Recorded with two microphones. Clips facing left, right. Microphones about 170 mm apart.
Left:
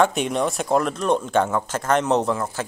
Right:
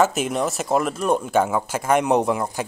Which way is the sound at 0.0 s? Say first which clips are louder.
Even; 5° right (ahead or behind).